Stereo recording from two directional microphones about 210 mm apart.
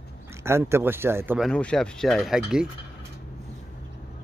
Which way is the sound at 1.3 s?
5° left (ahead or behind).